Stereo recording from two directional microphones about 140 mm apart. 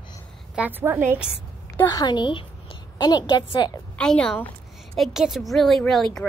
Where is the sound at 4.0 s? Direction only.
5° left (ahead or behind).